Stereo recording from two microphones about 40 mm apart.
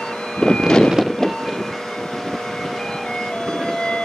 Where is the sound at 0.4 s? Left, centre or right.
Centre.